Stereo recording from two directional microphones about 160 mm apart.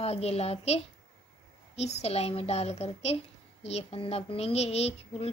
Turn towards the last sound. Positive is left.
turn(degrees=40)  # may be behind; listen again after turning